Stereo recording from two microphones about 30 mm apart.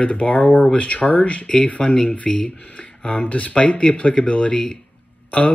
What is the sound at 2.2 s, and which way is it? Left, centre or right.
Speech, left.